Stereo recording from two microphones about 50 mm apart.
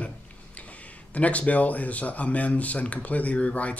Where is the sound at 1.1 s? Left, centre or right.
Left.